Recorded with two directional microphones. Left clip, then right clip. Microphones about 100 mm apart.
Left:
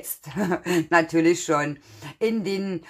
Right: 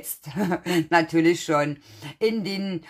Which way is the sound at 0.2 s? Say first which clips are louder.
Left 1 dB; 25° right (ahead or behind).